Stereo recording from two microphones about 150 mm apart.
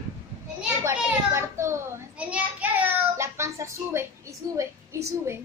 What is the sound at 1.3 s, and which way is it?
A child's voice, 20° right (ahead or behind).